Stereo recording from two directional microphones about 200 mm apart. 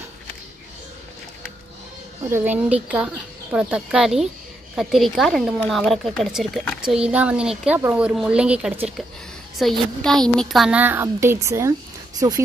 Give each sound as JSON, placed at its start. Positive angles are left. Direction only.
{"t": 2.2, "sound": "a woman's voice", "side_deg": -10}